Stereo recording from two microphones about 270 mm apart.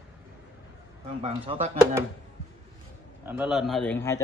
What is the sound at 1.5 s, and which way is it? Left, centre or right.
Speech, centre.